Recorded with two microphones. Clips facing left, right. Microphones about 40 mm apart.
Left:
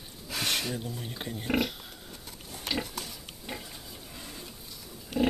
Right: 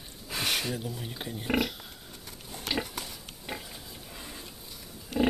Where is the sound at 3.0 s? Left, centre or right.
Centre.